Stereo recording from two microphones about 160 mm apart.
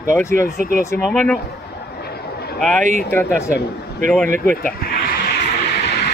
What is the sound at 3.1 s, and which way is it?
Speech, 15° left (ahead or behind).